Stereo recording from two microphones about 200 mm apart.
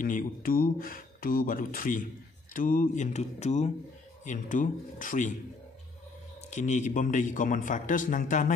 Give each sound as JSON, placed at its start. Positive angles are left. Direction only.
{"t": 0.0, "sound": "a man's voice", "side_deg": 45}
{"t": 6.5, "sound": "a man's voice", "side_deg": 35}